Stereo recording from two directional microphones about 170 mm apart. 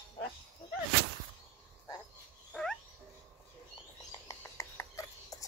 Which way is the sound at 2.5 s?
5° left (ahead or behind).